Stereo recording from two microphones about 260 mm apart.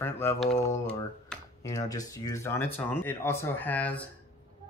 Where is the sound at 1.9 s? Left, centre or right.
Centre.